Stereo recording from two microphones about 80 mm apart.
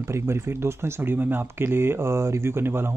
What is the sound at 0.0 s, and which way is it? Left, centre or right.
Speech, right.